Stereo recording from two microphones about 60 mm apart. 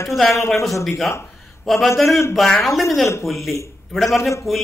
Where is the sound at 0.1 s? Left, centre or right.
Centre.